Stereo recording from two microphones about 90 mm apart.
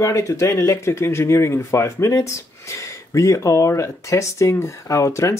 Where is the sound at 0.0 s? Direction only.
35° left (ahead or behind).